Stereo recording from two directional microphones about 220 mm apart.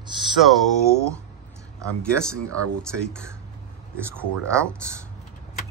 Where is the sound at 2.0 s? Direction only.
5° left (ahead or behind).